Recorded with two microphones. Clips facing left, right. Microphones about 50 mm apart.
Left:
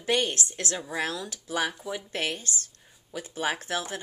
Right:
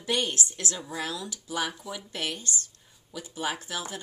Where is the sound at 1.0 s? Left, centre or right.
Left.